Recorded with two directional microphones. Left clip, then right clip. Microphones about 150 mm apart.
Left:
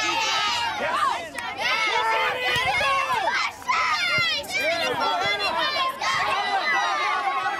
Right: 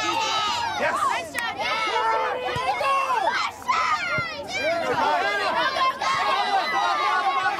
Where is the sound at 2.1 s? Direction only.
25° left (ahead or behind).